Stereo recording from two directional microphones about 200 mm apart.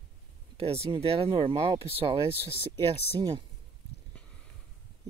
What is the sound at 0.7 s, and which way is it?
Speech, 15° right (ahead or behind).